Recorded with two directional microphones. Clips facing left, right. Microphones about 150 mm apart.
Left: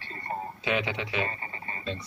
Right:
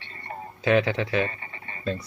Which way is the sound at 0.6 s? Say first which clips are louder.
Right 10 dB; 40° right (ahead or behind).